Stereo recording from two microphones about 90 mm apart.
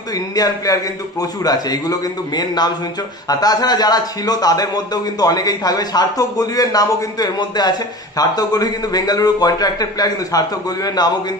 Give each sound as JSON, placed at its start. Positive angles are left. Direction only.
{"t": 0.1, "sound": "a man's voice", "side_deg": 45}